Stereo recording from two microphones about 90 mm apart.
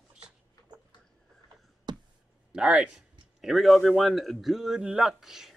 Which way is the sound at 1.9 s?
50° right (ahead or behind).